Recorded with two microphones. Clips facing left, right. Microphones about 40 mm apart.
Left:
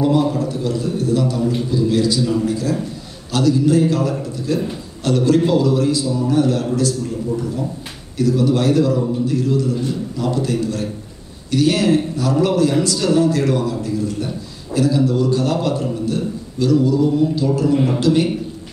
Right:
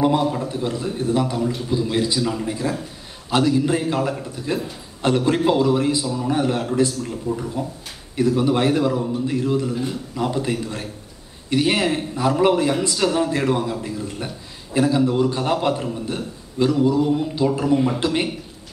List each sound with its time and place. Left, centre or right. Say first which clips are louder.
0.2 s a man's voice: left 3 dB; right